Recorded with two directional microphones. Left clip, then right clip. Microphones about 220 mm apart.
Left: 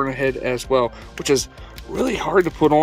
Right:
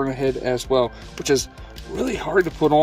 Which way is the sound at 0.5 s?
15° left (ahead or behind).